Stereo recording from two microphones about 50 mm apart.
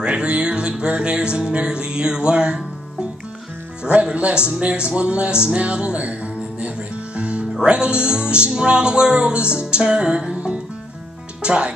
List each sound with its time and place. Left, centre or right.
0.0 s speech: right
3.8 s speech: right
7.2 s music: right
7.6 s speech: right